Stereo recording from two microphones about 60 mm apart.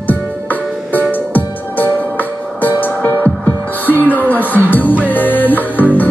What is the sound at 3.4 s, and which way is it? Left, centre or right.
Music, left.